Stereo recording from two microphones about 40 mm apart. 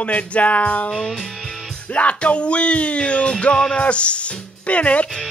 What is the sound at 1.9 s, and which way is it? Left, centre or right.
Music, left.